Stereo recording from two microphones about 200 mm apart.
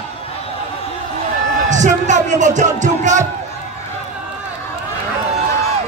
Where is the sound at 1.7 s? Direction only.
35° right (ahead or behind).